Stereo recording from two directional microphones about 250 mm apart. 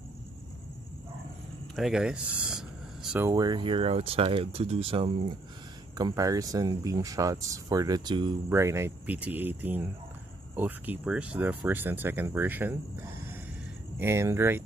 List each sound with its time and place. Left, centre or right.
1.8 s speech: centre
13.9 s speech: centre